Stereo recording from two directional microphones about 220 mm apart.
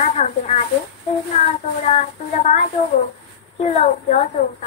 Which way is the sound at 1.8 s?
30° left (ahead or behind).